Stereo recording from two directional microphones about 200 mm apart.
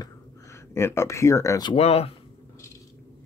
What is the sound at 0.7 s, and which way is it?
Speech, 10° left (ahead or behind).